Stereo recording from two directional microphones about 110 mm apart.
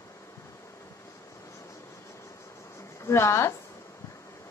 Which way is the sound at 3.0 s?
25° left (ahead or behind).